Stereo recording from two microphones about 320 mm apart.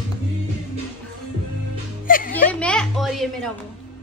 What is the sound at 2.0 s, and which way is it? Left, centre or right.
Music, left.